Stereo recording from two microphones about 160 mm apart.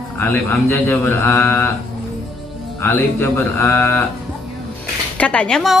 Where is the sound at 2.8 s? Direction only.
10° left (ahead or behind).